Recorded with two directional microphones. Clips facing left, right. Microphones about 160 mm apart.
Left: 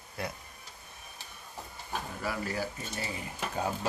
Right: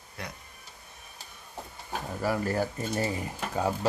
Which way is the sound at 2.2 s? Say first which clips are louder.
Right 7 dB; 45° right (ahead or behind).